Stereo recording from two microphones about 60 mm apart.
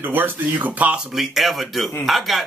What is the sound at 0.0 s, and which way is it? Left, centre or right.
Speech, right.